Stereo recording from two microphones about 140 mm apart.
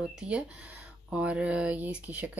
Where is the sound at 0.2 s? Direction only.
10° right (ahead or behind).